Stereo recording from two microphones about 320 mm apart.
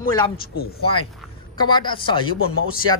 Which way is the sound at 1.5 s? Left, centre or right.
Centre.